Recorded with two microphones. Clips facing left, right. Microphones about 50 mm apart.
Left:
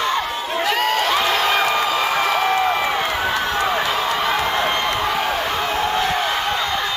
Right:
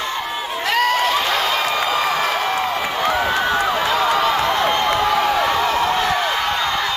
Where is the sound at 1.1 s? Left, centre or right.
Left.